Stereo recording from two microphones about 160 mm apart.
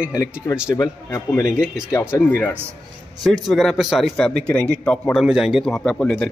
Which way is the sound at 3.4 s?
Centre (ahead or behind).